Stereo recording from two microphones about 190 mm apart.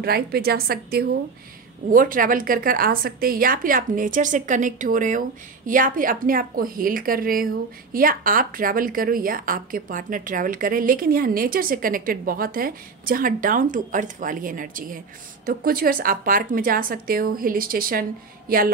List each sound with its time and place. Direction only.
0.0 s a woman's voice: 55° right (ahead or behind)